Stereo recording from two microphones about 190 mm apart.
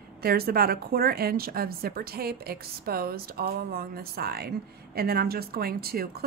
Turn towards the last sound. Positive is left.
turn(degrees=-55)  # may be behind; listen again after turning